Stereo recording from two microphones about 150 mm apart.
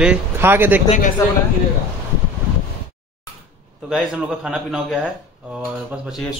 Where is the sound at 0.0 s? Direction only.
10° right (ahead or behind).